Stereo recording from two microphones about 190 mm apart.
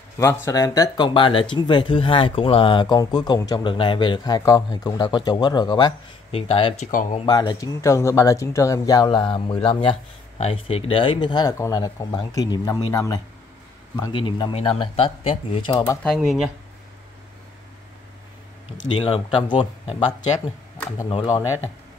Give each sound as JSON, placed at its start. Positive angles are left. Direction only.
{"t": 0.2, "sound": "speech", "side_deg": 15}
{"t": 6.9, "sound": "speech", "side_deg": 45}
{"t": 7.2, "sound": "speech", "side_deg": 25}
{"t": 16.0, "sound": "speech", "side_deg": 0}
{"t": 18.9, "sound": "speech", "side_deg": 30}